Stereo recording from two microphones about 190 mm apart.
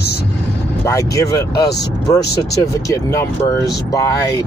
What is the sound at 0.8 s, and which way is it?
Speech, 15° left (ahead or behind).